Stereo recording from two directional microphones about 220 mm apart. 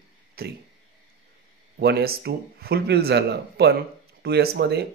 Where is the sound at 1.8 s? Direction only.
45° right (ahead or behind).